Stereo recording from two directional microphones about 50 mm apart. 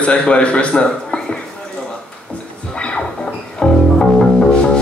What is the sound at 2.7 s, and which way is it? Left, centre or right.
Music, left.